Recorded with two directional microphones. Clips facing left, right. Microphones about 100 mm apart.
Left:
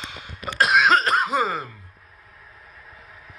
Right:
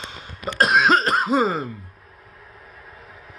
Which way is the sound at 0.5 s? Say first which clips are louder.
Right 1 dB; 35° right (ahead or behind).